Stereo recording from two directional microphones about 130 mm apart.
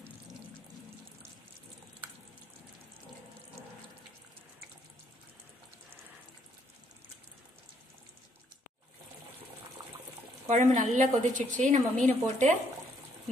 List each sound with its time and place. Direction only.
10.5 s a woman's voice: 75° right (ahead or behind)